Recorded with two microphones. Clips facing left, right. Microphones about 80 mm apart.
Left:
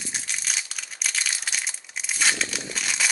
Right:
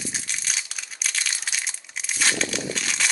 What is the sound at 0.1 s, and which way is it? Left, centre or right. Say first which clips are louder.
Crushing: even; centre.